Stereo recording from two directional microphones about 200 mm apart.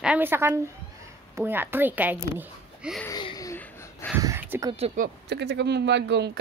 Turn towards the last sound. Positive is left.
turn(degrees=-60)  # may be behind; listen again after turning